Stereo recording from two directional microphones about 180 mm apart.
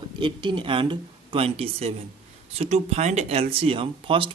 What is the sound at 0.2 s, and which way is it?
Speech, 25° right (ahead or behind).